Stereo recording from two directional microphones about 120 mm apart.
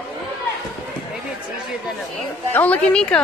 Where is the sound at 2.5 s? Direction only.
15° left (ahead or behind).